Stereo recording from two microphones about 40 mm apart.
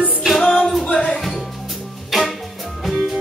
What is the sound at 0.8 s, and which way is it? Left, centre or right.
Music, left.